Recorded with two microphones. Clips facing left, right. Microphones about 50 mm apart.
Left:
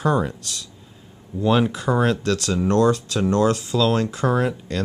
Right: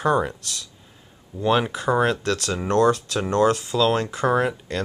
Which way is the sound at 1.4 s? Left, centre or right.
Centre.